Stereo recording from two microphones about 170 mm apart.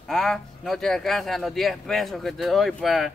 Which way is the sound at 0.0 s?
Centre (ahead or behind).